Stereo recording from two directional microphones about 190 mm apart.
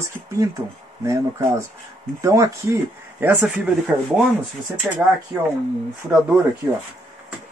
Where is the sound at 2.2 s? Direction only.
15° right (ahead or behind).